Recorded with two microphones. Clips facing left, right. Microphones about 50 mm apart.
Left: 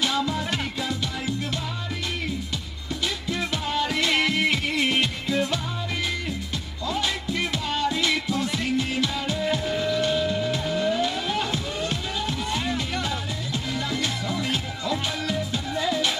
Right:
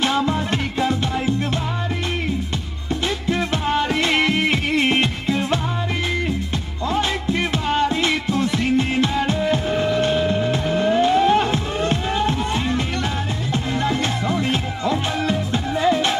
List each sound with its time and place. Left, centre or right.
0.0 s music: right
2.9 s music: right
6.9 s music: right